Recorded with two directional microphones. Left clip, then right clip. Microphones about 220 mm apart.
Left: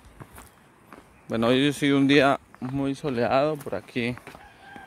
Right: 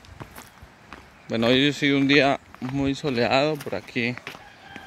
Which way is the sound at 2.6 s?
Centre (ahead or behind).